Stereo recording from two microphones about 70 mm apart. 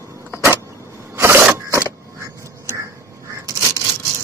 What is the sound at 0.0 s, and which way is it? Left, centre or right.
Vehicle, right.